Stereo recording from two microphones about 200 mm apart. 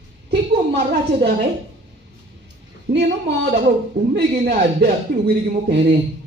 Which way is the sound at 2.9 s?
55° right (ahead or behind).